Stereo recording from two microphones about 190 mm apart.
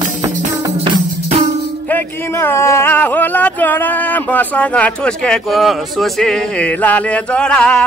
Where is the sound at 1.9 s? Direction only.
10° left (ahead or behind).